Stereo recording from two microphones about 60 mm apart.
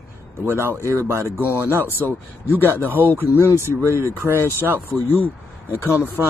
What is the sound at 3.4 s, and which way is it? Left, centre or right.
Speech, left.